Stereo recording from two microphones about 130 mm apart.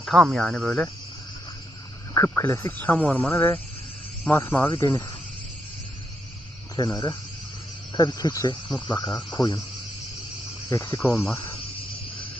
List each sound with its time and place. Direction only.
0.0 s speech: centre (ahead or behind)
2.1 s speech: 15° left (ahead or behind)
6.8 s speech: 30° left (ahead or behind)
10.7 s speech: 15° left (ahead or behind)